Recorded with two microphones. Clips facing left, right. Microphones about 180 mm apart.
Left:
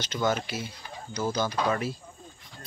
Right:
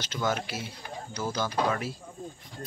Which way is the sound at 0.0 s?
5° right (ahead or behind).